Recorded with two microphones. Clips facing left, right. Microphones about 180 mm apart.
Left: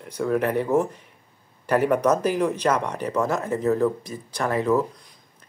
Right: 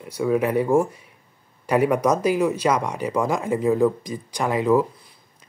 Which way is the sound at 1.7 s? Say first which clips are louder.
Right 1 dB; 10° right (ahead or behind).